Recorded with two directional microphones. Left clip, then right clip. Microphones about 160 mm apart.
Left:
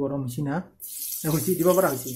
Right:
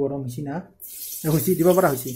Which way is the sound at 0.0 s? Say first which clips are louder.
Right 2 dB; 5° left (ahead or behind).